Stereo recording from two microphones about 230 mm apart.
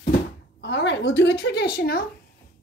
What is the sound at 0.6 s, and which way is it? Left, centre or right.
Speech, left.